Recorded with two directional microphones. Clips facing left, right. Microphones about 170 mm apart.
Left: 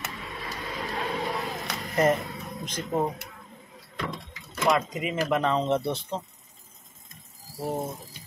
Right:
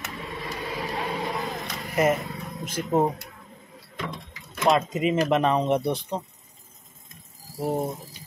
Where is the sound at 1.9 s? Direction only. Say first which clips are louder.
Right 1 dB; 10° right (ahead or behind).